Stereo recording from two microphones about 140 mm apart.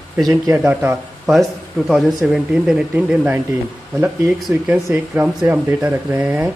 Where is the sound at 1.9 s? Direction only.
Centre (ahead or behind).